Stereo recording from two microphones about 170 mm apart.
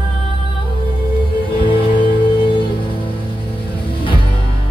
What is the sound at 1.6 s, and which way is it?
Music, 30° left (ahead or behind).